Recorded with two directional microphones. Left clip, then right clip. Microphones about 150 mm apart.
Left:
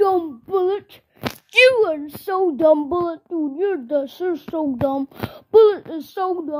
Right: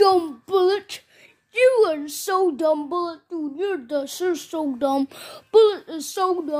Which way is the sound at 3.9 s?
10° left (ahead or behind).